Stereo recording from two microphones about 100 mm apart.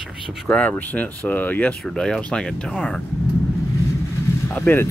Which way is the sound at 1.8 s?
5° left (ahead or behind).